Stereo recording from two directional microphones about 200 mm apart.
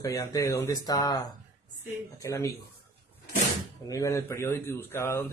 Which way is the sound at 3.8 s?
15° left (ahead or behind).